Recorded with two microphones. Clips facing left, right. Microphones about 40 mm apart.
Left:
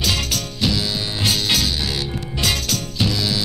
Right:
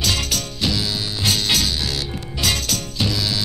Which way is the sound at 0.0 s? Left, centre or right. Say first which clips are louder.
Even; centre.